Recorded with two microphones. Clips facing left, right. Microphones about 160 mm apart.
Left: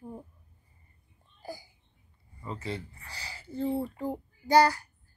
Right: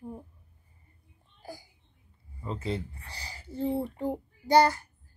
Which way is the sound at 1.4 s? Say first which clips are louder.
Left 2 dB; centre (ahead or behind).